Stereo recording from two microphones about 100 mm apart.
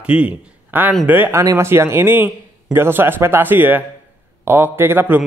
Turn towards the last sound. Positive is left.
turn(degrees=-20)  # may be behind; listen again after turning